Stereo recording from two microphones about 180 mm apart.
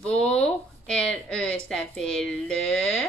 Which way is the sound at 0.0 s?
5° left (ahead or behind).